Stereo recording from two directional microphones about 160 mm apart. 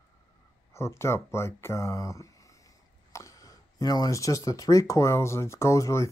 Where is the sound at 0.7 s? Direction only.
15° left (ahead or behind).